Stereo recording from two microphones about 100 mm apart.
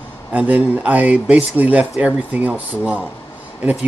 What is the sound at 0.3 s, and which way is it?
Speech, 15° right (ahead or behind).